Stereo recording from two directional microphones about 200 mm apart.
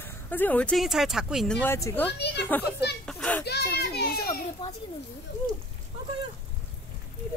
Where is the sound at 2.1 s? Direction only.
60° left (ahead or behind).